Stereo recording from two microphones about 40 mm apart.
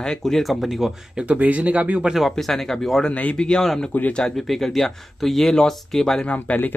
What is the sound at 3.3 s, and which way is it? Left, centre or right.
Speech, left.